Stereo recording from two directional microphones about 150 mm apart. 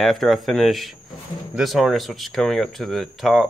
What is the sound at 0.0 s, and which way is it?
Speech, centre (ahead or behind).